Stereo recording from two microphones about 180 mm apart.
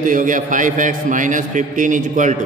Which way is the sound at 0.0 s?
45° right (ahead or behind).